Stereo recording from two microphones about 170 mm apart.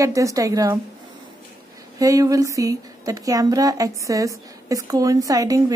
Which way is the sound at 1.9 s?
20° right (ahead or behind).